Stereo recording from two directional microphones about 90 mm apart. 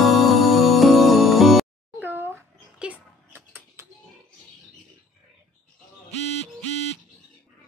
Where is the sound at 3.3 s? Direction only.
25° right (ahead or behind).